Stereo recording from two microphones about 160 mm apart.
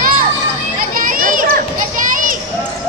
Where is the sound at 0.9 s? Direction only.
60° right (ahead or behind).